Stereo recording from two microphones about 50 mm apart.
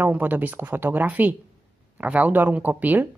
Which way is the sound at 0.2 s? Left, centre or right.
Right.